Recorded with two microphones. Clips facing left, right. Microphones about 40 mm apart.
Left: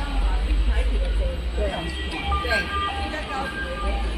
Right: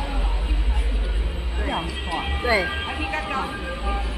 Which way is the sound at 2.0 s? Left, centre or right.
Right.